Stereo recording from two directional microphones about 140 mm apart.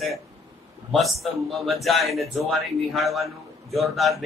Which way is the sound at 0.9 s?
Centre (ahead or behind).